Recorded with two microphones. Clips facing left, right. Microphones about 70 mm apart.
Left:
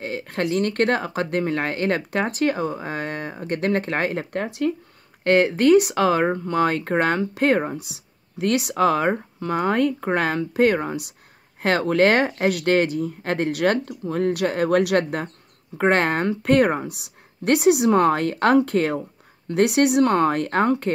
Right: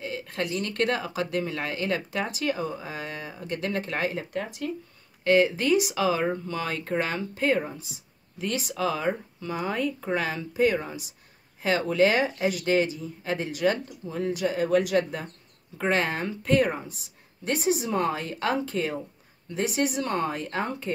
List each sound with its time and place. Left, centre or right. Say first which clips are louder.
0.0 s speech: left 5 dB; left
5.2 s speech: left 5 dB; left